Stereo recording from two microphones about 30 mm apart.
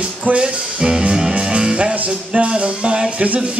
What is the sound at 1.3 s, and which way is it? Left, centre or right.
Music, right.